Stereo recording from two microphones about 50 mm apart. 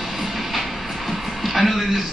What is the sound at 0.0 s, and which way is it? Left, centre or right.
A man's voice, centre.